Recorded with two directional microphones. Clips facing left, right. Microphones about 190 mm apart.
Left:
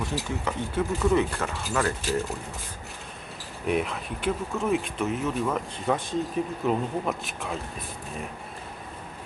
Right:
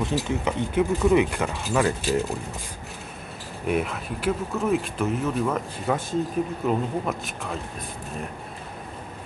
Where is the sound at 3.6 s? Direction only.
Centre (ahead or behind).